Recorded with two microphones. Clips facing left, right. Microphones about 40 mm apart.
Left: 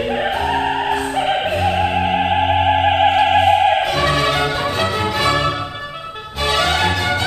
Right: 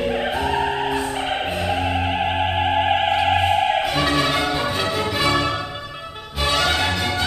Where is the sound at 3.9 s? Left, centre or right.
Centre.